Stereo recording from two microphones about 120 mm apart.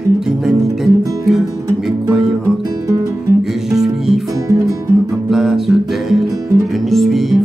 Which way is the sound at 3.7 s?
5° right (ahead or behind).